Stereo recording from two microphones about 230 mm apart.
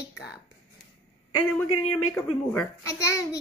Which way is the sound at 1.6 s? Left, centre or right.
Left.